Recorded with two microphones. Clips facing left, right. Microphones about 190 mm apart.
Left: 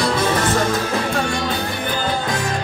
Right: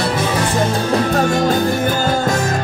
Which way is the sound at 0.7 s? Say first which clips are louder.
Right 4 dB; 40° right (ahead or behind).